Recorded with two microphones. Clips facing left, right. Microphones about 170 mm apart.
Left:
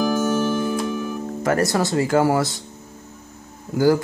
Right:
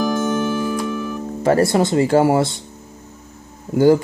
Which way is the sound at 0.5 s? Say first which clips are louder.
Right 1 dB; 10° right (ahead or behind).